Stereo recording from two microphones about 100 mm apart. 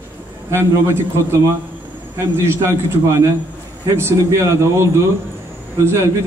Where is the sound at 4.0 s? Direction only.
25° right (ahead or behind).